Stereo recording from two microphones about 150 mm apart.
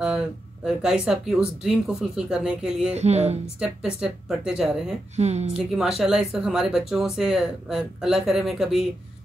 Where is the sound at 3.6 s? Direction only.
5° right (ahead or behind).